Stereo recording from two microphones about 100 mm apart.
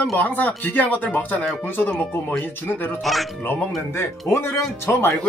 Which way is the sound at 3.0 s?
Centre (ahead or behind).